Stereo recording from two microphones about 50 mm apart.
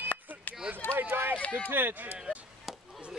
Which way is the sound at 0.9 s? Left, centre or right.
Right.